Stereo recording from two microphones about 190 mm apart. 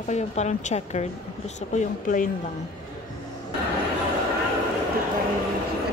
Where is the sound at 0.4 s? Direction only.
35° left (ahead or behind).